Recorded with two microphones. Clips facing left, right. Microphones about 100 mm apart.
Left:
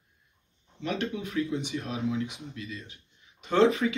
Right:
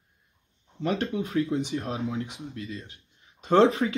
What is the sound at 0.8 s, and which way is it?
Speech, 40° right (ahead or behind).